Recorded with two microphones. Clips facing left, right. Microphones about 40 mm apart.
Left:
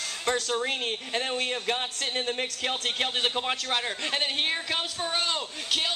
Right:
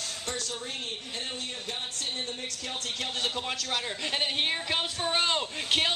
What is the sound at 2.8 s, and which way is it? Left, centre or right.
A man's voice, left.